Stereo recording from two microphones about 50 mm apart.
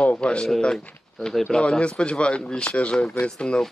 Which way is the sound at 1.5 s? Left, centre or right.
Left.